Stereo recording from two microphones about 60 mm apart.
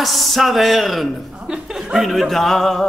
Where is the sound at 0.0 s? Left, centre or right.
Centre.